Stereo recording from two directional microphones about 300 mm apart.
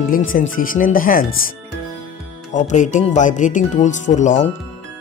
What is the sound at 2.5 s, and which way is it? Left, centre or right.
Speech, left.